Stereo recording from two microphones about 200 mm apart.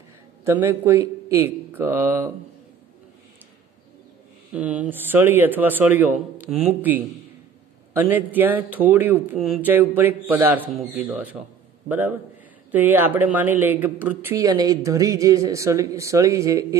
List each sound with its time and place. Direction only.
0.5 s speech: 10° right (ahead or behind)
4.6 s speech: 5° right (ahead or behind)